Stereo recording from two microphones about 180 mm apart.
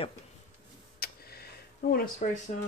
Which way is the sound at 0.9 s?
60° left (ahead or behind).